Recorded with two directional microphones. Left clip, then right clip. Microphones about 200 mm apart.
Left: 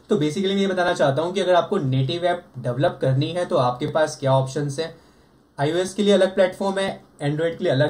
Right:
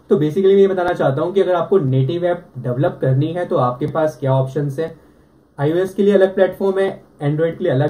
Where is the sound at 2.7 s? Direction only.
10° left (ahead or behind).